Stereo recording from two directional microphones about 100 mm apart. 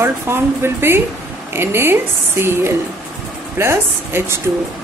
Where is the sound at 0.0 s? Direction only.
25° right (ahead or behind).